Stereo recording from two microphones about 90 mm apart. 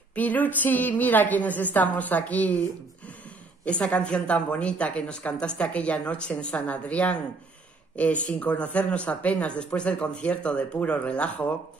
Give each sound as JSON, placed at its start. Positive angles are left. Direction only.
{"t": 0.1, "sound": "a woman's voice", "side_deg": 15}
{"t": 3.6, "sound": "speech", "side_deg": 15}